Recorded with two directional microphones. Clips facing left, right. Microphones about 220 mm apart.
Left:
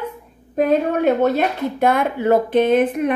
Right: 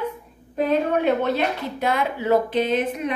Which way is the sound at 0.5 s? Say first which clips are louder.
Left 4 dB; 45° left (ahead or behind).